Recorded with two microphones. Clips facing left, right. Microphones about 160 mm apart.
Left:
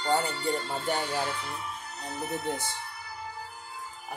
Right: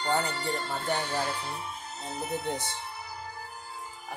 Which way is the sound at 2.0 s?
25° right (ahead or behind).